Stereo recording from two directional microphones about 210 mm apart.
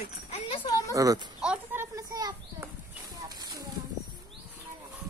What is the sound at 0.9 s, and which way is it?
Speech, 15° right (ahead or behind).